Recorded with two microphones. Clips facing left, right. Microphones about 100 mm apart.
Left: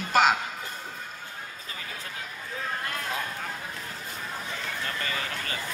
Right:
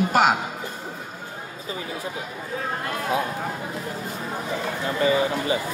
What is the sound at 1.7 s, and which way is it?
Speech, 20° right (ahead or behind).